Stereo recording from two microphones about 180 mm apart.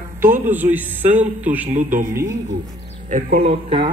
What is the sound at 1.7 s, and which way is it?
Speech, 45° right (ahead or behind).